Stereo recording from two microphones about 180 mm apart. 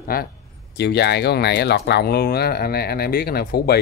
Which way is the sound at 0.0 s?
55° left (ahead or behind).